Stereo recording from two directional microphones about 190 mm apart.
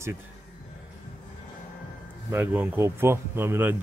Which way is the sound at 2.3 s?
10° right (ahead or behind).